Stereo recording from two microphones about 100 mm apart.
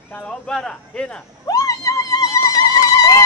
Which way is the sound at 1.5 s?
35° left (ahead or behind).